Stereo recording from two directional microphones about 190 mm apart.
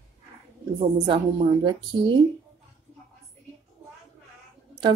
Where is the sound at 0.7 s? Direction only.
25° right (ahead or behind).